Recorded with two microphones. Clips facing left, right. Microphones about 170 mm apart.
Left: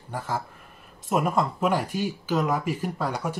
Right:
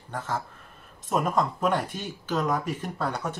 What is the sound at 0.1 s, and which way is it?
Speech, 10° left (ahead or behind).